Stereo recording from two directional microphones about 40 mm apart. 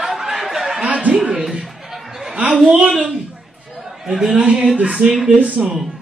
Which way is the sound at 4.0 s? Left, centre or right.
Centre.